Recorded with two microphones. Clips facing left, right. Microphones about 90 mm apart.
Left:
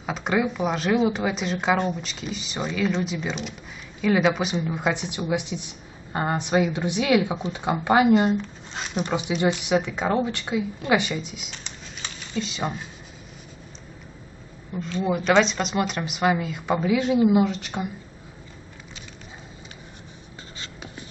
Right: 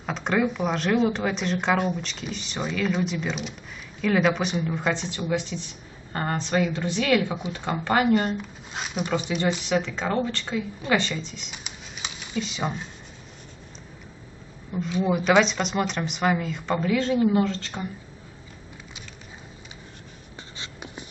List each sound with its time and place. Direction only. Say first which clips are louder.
0.0 s speech: even; 5° left (ahead or behind)
8.3 s speech: left 5 dB; 5° right (ahead or behind)
9.6 s speech: left 2 dB; 15° left (ahead or behind)
11.5 s a sound: even; 10° right (ahead or behind)
14.7 s speech: right 1 dB; 10° right (ahead or behind); by 17.8 s 15° left (ahead or behind)
20.5 s writing: right 1 dB; 20° right (ahead or behind)